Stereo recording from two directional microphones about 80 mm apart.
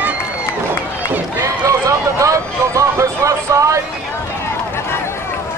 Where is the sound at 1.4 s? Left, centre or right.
Right.